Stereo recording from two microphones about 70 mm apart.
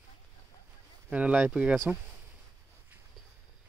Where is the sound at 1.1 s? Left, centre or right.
Centre.